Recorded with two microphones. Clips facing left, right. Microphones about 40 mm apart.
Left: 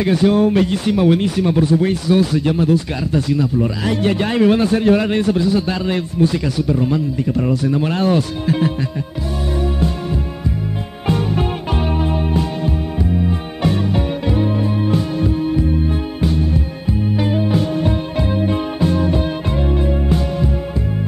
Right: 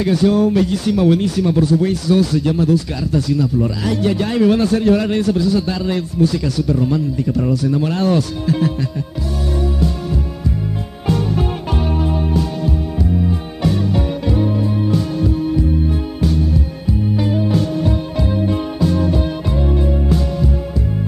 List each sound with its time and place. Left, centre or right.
0.0 s speech: left
11.1 s music: left